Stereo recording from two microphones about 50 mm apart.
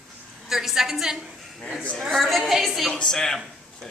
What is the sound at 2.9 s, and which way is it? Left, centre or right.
A man's voice, centre.